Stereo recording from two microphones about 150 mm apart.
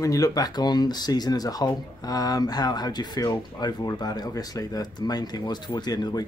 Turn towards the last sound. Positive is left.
turn(degrees=25)  # may be behind; listen again after turning